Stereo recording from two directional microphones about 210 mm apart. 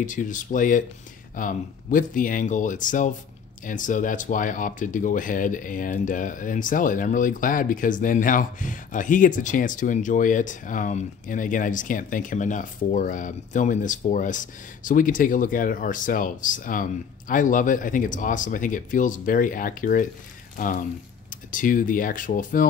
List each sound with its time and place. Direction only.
0.0 s speech: 40° left (ahead or behind)